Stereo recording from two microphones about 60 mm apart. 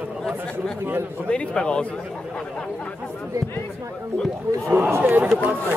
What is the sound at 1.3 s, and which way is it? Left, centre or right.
Speech, centre.